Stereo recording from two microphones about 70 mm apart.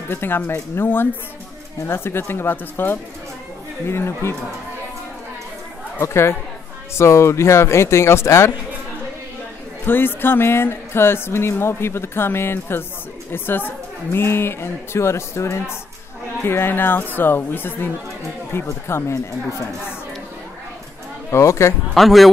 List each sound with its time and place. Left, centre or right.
0.1 s speech: left
5.9 s speech: left
9.8 s speech: left
21.3 s speech: left
21.9 s speech: centre